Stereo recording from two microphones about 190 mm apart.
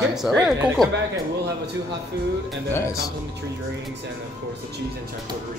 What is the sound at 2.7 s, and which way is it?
Speech, 15° left (ahead or behind).